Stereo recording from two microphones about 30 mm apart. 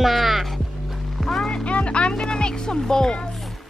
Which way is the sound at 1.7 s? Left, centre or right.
Left.